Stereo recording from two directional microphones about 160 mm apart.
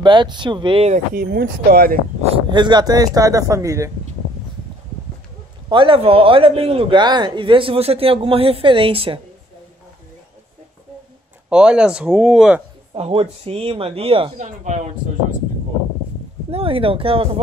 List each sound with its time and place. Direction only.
0.0 s speech: 30° right (ahead or behind)
1.1 s speech: 75° right (ahead or behind)
2.2 s speech: 30° right (ahead or behind)
5.7 s speech: 30° right (ahead or behind)
11.4 s speech: 5° right (ahead or behind)
12.9 s speech: 40° right (ahead or behind)
16.4 s speech: 35° right (ahead or behind)